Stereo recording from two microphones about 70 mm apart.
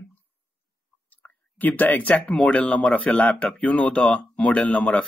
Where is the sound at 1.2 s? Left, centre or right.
Left.